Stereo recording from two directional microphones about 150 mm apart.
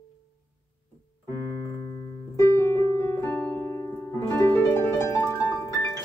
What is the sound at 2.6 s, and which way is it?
Keyboard, 20° left (ahead or behind).